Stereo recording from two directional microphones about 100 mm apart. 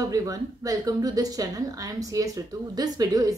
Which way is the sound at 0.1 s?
35° right (ahead or behind).